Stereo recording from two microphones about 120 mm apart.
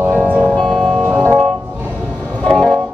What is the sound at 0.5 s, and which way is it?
Music, centre (ahead or behind).